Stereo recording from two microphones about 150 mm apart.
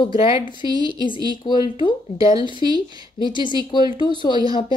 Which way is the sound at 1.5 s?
30° left (ahead or behind).